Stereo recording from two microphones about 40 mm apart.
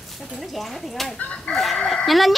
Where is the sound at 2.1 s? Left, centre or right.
Centre.